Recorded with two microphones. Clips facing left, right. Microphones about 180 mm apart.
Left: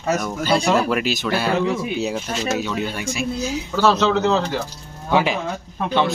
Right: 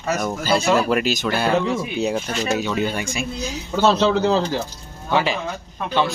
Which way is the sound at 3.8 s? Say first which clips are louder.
Right 1 dB; 25° right (ahead or behind).